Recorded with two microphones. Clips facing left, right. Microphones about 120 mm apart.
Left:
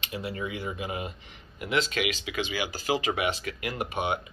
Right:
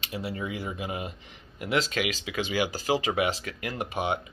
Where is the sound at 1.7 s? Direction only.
40° right (ahead or behind).